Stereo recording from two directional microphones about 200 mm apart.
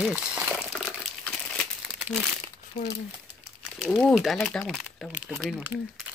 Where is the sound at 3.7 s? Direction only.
Centre (ahead or behind).